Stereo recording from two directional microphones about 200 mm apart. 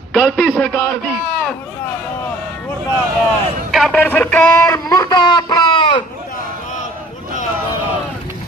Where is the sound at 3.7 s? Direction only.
5° left (ahead or behind); by 6.0 s 20° left (ahead or behind).